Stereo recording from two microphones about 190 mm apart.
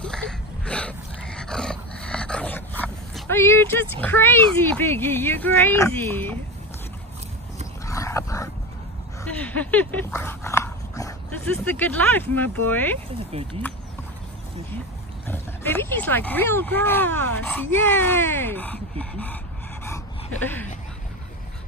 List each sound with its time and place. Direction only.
0.0 s dog: 5° left (ahead or behind)
4.0 s speech: 10° left (ahead or behind)
7.8 s dog: 15° left (ahead or behind)
11.5 s speech: 10° left (ahead or behind)
13.3 s speech: 30° right (ahead or behind)
15.2 s speech: 10° left (ahead or behind)
19.8 s a sound: 10° left (ahead or behind)